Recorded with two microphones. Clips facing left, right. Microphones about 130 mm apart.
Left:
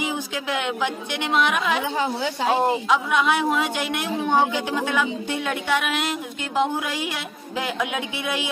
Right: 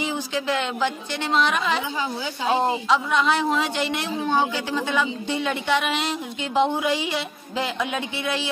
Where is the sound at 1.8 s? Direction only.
60° left (ahead or behind).